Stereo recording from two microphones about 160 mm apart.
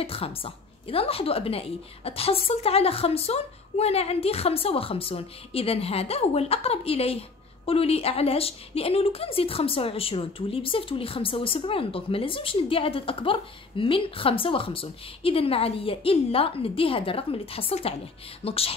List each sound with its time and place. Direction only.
0.0 s a woman's voice: 35° left (ahead or behind)